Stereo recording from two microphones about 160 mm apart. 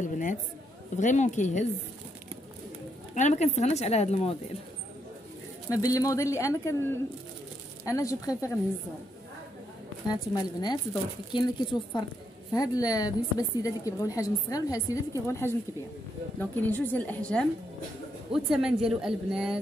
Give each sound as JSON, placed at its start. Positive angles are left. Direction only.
{"t": 0.0, "sound": "a sound", "side_deg": 50}
{"t": 0.9, "sound": "speech", "side_deg": 50}
{"t": 3.2, "sound": "speech", "side_deg": 45}
{"t": 5.8, "sound": "a woman's voice", "side_deg": 20}
{"t": 10.3, "sound": "a woman's voice", "side_deg": 25}
{"t": 18.3, "sound": "a woman's voice", "side_deg": -5}